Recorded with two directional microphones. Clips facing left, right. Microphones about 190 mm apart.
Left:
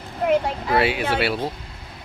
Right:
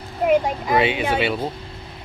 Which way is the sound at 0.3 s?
15° right (ahead or behind).